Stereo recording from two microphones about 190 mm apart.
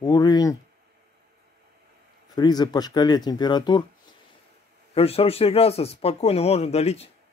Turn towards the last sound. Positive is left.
turn(degrees=35)  # may be behind; listen again after turning